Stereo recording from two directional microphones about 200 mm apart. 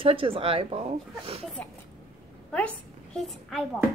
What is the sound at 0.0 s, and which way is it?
Speech, 25° right (ahead or behind).